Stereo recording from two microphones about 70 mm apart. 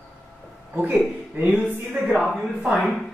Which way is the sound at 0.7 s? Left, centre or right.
Right.